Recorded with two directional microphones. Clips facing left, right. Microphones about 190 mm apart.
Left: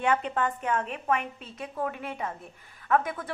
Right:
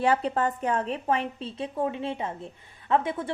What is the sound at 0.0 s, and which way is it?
A woman's voice, 35° right (ahead or behind).